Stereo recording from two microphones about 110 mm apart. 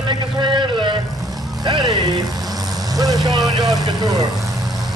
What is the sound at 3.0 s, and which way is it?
Speech, 35° right (ahead or behind).